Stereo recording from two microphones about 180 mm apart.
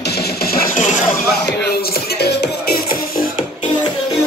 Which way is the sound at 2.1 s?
65° left (ahead or behind).